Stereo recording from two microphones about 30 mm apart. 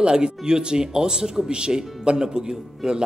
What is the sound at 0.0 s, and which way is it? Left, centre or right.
Speech, right.